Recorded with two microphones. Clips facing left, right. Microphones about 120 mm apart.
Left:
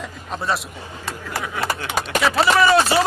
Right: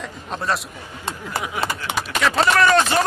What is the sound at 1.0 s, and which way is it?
Speech, 20° right (ahead or behind).